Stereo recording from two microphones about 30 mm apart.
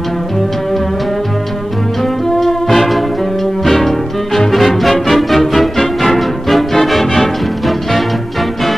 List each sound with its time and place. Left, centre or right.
2.2 s brass instrument: centre
3.6 s music: centre